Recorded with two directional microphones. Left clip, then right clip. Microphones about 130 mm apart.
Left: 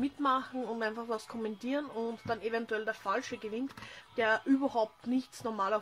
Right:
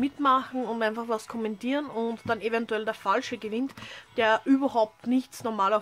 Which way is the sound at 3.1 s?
50° right (ahead or behind).